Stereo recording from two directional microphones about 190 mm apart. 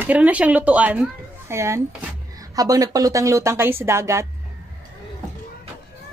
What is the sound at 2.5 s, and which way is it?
Speech, 20° right (ahead or behind).